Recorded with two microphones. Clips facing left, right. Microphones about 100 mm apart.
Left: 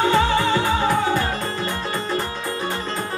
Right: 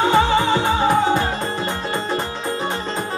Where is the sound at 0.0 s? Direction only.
20° right (ahead or behind).